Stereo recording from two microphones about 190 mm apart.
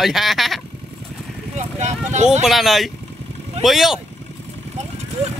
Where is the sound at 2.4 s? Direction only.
Centre (ahead or behind).